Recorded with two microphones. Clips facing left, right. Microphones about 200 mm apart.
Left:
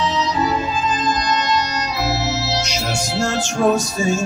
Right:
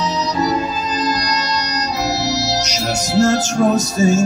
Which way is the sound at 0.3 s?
40° right (ahead or behind).